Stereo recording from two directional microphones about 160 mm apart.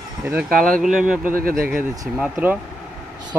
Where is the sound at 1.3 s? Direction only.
65° right (ahead or behind).